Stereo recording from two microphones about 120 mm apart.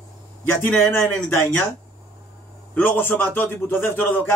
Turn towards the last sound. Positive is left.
turn(degrees=15)  # may be behind; listen again after turning